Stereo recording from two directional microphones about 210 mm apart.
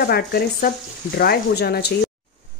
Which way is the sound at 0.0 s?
50° left (ahead or behind).